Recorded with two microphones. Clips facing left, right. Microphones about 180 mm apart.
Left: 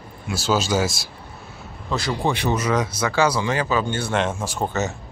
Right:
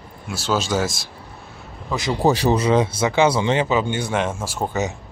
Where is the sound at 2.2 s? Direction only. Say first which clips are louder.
Right 7 dB; 35° right (ahead or behind).